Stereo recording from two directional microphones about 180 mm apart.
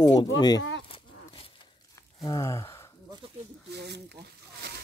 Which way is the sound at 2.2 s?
20° left (ahead or behind).